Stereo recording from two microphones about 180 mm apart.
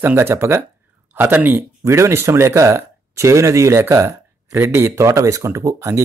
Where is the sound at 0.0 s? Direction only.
15° right (ahead or behind).